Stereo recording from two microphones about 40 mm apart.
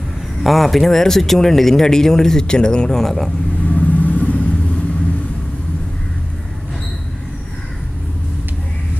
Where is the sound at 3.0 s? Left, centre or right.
Centre.